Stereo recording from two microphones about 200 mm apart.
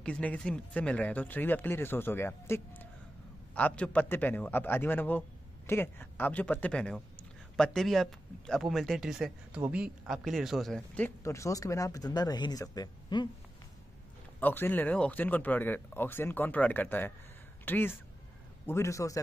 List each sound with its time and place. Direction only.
0.0 s speech: 5° left (ahead or behind)
14.4 s speech: 10° left (ahead or behind)